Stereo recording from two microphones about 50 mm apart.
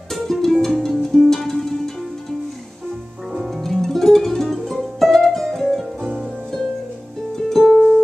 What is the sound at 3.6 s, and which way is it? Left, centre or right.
Music, centre.